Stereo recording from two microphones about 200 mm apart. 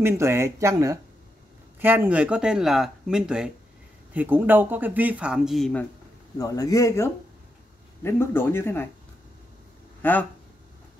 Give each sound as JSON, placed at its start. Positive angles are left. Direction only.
{"t": 0.0, "sound": "speech", "side_deg": -15}
{"t": 6.3, "sound": "speech", "side_deg": 15}
{"t": 10.0, "sound": "speech", "side_deg": 10}